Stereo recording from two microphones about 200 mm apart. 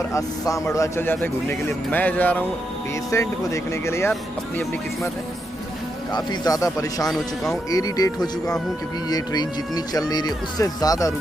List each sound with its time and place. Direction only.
0.1 s a man's voice: 15° left (ahead or behind)
6.1 s a man's voice: 20° left (ahead or behind)
7.1 s speech: centre (ahead or behind)
7.7 s speech: 20° left (ahead or behind)